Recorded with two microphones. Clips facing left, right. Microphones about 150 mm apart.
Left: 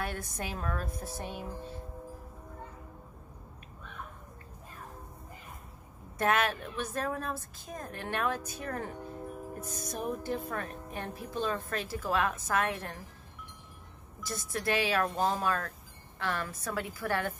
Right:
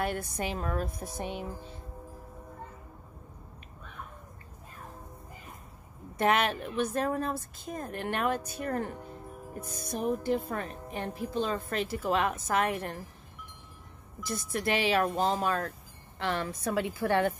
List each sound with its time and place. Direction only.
0.0 s speech: 15° right (ahead or behind)
6.1 s speech: 15° right (ahead or behind)
9.6 s speech: 15° right (ahead or behind)
14.3 s a woman's voice: 15° right (ahead or behind)